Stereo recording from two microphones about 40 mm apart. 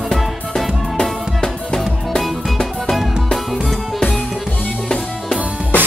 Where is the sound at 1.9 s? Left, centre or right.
Centre.